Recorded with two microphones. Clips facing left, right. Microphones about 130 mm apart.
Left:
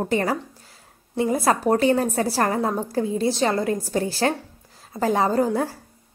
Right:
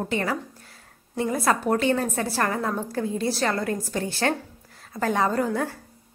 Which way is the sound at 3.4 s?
25° left (ahead or behind).